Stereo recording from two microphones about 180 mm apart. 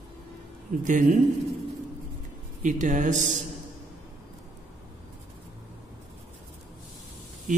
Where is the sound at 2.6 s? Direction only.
45° right (ahead or behind).